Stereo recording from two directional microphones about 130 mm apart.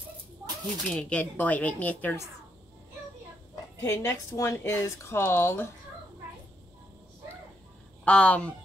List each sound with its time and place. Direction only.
0.8 s a woman's voice: 5° left (ahead or behind)
3.8 s speech: 25° left (ahead or behind)
8.0 s a woman's voice: 10° left (ahead or behind)